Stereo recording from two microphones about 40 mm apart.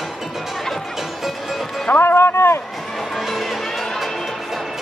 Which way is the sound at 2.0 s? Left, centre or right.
Left.